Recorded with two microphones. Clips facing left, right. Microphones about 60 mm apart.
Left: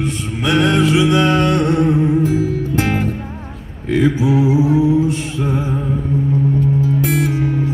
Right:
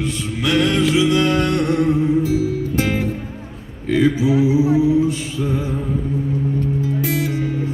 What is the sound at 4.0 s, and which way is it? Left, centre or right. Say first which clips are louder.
A capella: left 1 dB; left.